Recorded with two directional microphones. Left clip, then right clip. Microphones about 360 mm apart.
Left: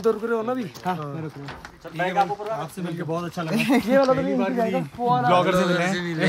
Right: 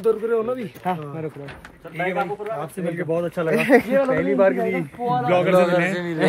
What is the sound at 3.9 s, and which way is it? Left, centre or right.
Speech, left.